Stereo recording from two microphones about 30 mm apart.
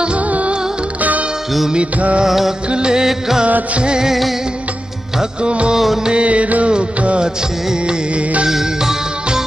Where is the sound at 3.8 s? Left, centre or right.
Right.